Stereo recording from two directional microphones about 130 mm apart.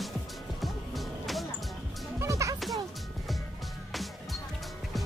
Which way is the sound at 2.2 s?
25° right (ahead or behind).